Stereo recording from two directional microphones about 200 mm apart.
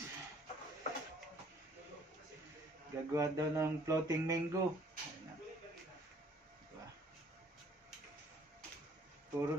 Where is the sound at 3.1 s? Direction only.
15° right (ahead or behind).